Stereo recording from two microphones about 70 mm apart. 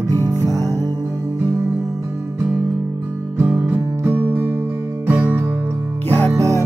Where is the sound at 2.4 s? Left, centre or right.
Right.